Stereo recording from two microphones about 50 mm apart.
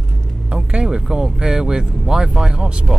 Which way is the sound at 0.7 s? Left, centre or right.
Centre.